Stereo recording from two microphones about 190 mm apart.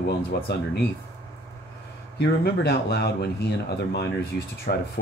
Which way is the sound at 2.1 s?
60° left (ahead or behind).